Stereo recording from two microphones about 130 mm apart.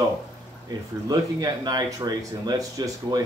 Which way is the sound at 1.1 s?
30° right (ahead or behind).